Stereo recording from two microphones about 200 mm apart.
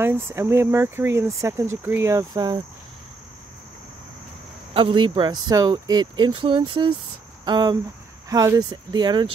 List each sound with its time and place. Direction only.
0.0 s speech: 10° right (ahead or behind)
4.7 s speech: 25° right (ahead or behind)